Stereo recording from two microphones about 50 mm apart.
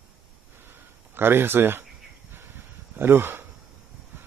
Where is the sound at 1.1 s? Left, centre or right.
Right.